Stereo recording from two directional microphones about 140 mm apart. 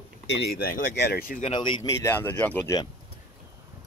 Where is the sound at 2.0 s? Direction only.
15° left (ahead or behind).